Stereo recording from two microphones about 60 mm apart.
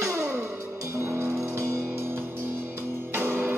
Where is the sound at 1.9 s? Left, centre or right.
Right.